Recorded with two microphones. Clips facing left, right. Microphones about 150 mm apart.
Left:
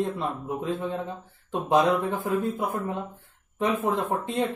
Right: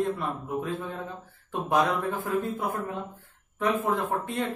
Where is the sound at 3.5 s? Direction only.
25° left (ahead or behind).